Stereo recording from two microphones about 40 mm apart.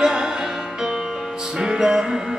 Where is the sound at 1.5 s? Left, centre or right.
Centre.